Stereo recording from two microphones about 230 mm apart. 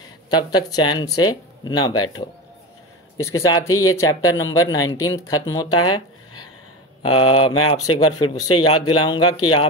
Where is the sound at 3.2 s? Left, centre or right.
Centre.